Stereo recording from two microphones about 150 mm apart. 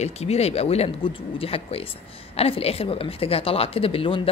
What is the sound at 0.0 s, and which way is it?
Speech, 45° left (ahead or behind).